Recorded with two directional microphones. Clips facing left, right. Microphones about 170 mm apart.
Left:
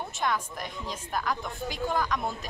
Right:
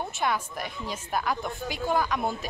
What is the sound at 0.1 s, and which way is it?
A woman's voice, 5° right (ahead or behind).